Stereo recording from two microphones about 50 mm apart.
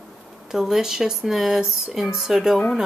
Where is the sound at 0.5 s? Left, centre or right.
Centre.